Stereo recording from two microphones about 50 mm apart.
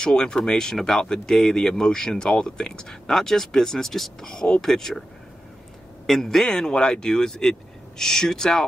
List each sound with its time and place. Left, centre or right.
0.0 s speech: centre
6.0 s speech: centre